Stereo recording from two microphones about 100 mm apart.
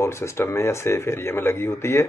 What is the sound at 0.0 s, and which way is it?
A man's voice, 25° left (ahead or behind).